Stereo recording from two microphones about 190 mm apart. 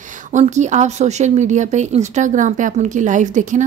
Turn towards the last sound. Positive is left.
turn(degrees=-40)  # may be behind; listen again after turning